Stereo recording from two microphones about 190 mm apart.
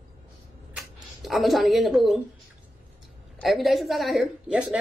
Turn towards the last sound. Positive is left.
turn(degrees=-5)  # may be behind; listen again after turning